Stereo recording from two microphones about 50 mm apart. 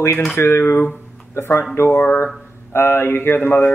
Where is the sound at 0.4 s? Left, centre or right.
Left.